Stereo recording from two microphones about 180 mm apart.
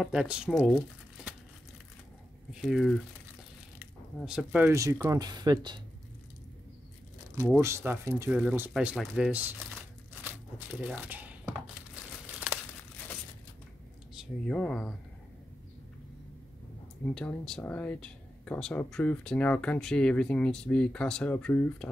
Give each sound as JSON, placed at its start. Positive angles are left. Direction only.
{"t": 0.0, "sound": "speech", "side_deg": -5}
{"t": 2.6, "sound": "speech", "side_deg": 0}
{"t": 4.2, "sound": "speech", "side_deg": -5}
{"t": 7.5, "sound": "speech", "side_deg": -15}
{"t": 10.7, "sound": "a sound", "side_deg": -5}
{"t": 14.1, "sound": "speech", "side_deg": 5}
{"t": 17.0, "sound": "speech", "side_deg": 5}